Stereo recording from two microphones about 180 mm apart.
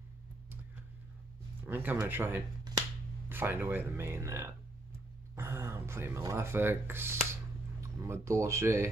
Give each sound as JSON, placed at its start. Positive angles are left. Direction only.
{"t": 1.6, "sound": "speech", "side_deg": -10}